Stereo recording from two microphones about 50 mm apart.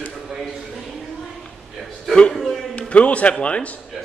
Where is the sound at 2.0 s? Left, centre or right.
Centre.